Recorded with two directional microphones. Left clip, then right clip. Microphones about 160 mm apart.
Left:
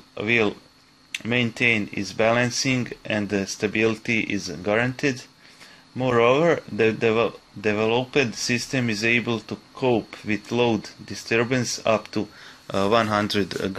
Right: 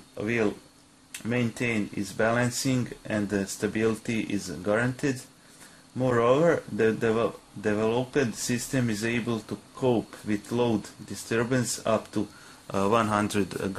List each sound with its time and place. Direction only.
0.2 s speech: 25° left (ahead or behind)